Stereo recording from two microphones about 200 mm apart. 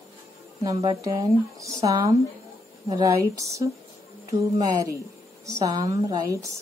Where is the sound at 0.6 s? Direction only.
15° right (ahead or behind).